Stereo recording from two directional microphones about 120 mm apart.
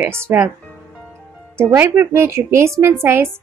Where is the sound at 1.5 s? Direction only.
20° right (ahead or behind).